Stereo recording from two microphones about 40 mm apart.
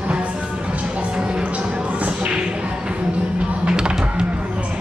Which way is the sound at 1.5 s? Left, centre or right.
Right.